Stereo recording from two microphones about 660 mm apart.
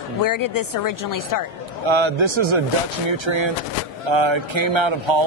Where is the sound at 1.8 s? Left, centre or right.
Right.